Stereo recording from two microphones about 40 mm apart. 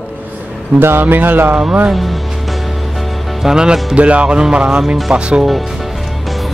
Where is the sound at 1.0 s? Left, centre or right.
Right.